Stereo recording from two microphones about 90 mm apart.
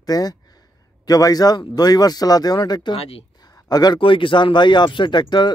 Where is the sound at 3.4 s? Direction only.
45° left (ahead or behind).